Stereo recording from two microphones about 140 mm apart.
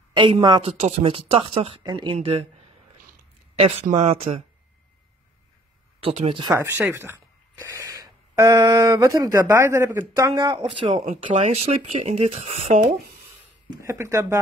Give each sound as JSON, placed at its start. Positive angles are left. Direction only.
{"t": 0.1, "sound": "speech", "side_deg": -35}
{"t": 0.7, "sound": "speech", "side_deg": -45}
{"t": 2.1, "sound": "speech", "side_deg": -45}
{"t": 3.5, "sound": "speech", "side_deg": -50}
{"t": 5.9, "sound": "speech", "side_deg": -40}
{"t": 6.5, "sound": "speech", "side_deg": -15}
{"t": 10.6, "sound": "speech", "side_deg": -40}
{"t": 11.2, "sound": "speech", "side_deg": -55}
{"t": 13.8, "sound": "speech", "side_deg": -20}